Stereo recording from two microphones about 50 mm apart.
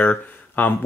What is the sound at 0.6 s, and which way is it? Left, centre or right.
Speech, left.